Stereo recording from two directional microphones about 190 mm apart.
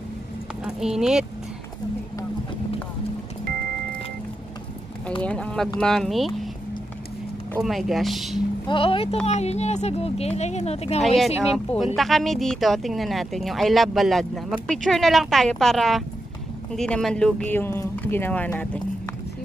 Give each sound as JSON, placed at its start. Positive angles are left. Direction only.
{"t": 0.7, "sound": "speech", "side_deg": -5}
{"t": 5.2, "sound": "speech", "side_deg": 5}
{"t": 7.6, "sound": "speech", "side_deg": 0}
{"t": 8.6, "sound": "speech", "side_deg": 25}
{"t": 11.5, "sound": "speech", "side_deg": 0}